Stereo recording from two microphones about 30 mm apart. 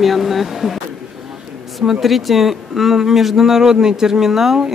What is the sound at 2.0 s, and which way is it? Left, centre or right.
A woman's voice, centre.